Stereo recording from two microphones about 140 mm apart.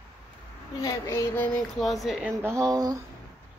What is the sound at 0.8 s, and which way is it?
Child singing, 20° left (ahead or behind).